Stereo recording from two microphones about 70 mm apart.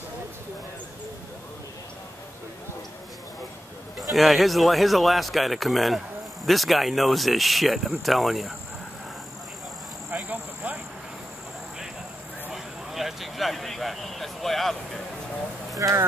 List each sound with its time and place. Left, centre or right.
4.1 s a man's voice: centre
10.1 s speech: right
12.5 s speech: centre
15.8 s speech: right